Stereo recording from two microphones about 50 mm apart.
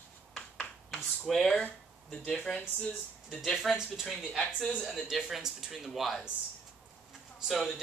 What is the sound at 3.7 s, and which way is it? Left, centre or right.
Speech, centre.